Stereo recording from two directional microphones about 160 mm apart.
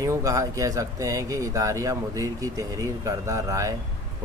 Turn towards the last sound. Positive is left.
turn(degrees=-20)  # may be behind; listen again after turning